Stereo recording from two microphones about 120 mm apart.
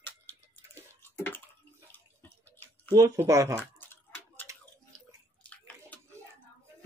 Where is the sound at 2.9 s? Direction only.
25° right (ahead or behind).